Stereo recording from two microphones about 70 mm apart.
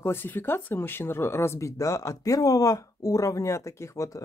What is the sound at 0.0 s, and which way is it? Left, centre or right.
Speech, left.